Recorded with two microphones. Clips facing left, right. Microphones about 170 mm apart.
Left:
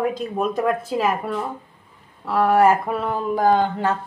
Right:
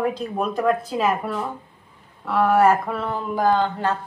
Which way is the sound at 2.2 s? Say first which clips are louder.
Left 1 dB; 5° left (ahead or behind).